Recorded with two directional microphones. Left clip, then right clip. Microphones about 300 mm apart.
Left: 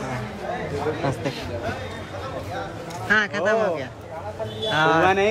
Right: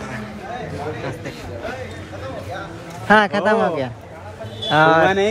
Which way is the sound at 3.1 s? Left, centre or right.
Centre.